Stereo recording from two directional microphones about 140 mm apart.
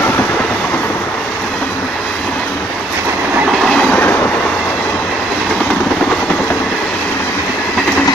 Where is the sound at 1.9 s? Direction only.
5° left (ahead or behind).